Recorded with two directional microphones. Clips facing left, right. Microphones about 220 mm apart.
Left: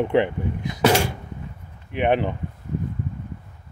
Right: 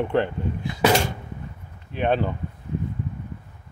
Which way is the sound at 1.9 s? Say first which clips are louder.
Left 2 dB; 15° left (ahead or behind).